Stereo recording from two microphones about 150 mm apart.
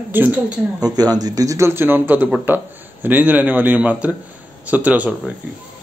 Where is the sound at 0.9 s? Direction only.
25° right (ahead or behind); by 5.1 s 10° right (ahead or behind).